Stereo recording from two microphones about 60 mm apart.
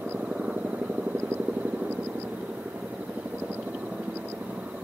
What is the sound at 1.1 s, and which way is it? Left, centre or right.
Vehicle, right.